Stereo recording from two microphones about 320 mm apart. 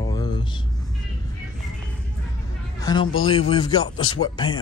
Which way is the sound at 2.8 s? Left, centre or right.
Centre.